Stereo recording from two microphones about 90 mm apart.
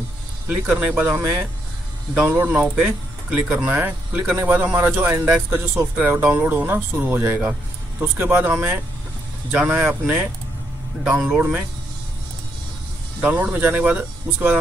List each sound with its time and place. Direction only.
0.5 s speech: 15° right (ahead or behind)
13.2 s speech: 15° right (ahead or behind)